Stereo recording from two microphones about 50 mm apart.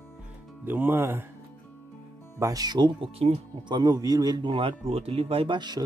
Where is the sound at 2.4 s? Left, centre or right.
Right.